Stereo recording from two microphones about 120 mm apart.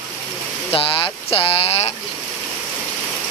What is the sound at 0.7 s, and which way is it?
Speech, 50° left (ahead or behind).